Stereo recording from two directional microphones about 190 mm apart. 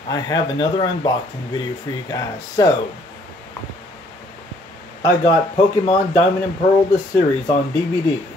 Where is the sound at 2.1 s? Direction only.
20° left (ahead or behind).